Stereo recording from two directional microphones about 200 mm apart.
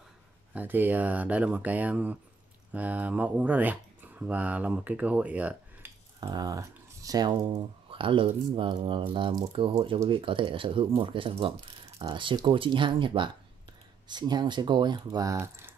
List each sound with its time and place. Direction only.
0.6 s speech: 10° right (ahead or behind)
6.2 s speech: 20° right (ahead or behind)